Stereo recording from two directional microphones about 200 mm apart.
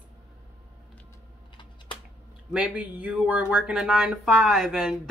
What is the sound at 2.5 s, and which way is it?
A woman's voice, 5° right (ahead or behind).